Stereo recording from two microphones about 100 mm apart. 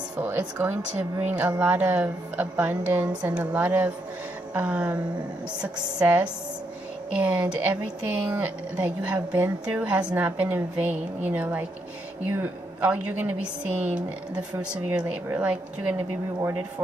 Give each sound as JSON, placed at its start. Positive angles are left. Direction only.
{"t": 0.2, "sound": "a woman's voice", "side_deg": -15}